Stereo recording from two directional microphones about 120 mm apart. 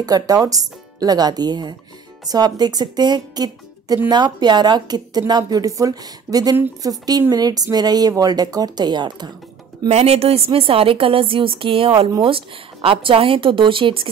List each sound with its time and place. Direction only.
0.0 s speech: 30° right (ahead or behind)
9.8 s a woman's voice: 60° right (ahead or behind); by 14.1 s 45° right (ahead or behind)